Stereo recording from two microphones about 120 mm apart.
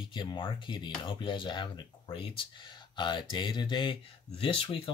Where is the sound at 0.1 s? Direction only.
40° left (ahead or behind).